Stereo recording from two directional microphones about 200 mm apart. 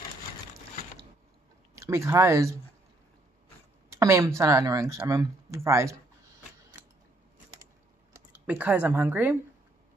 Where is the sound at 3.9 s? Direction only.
15° right (ahead or behind).